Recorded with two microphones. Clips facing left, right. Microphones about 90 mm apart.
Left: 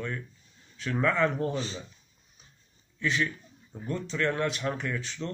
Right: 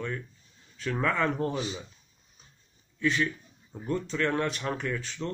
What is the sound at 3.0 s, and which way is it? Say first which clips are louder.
Speech: right 2 dB; 40° right (ahead or behind).